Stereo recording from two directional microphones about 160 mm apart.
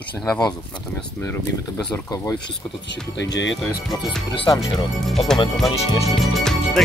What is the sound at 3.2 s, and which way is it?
Speech, 90° left.